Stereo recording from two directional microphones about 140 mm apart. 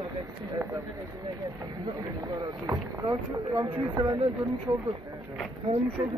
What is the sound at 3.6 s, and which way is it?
Speech, 35° right (ahead or behind).